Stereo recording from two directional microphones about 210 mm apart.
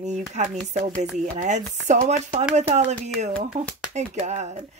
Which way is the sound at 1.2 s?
35° right (ahead or behind).